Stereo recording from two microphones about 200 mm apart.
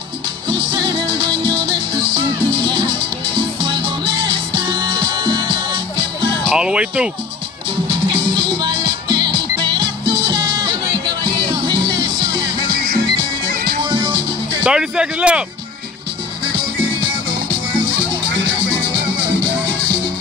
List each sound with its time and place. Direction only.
0.7 s music: 25° right (ahead or behind)
4.3 s music: 25° right (ahead or behind)
6.5 s speech: 5° right (ahead or behind)
7.9 s music: 25° right (ahead or behind)
13.9 s music: 25° right (ahead or behind)
14.6 s speech: 5° right (ahead or behind)